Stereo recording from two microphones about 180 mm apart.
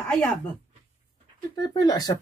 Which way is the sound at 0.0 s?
10° left (ahead or behind).